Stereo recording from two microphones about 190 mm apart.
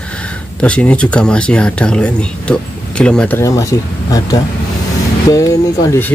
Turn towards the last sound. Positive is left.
turn(degrees=15)  # may be behind; listen again after turning